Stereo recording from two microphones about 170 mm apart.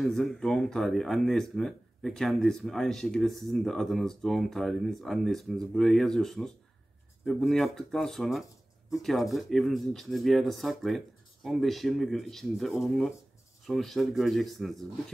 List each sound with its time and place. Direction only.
0.0 s speech: centre (ahead or behind)